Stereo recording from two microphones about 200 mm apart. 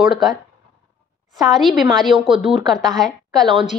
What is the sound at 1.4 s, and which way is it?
A woman's voice, centre (ahead or behind).